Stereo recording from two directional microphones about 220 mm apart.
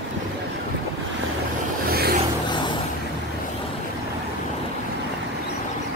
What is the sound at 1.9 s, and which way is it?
Vehicle, 45° right (ahead or behind).